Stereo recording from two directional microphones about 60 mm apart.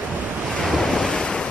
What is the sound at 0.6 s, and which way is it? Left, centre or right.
Waves, centre.